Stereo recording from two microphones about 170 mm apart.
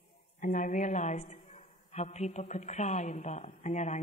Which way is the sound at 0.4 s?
50° left (ahead or behind).